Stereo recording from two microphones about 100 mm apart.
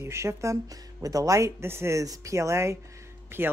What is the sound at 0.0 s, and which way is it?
Speech, 25° right (ahead or behind).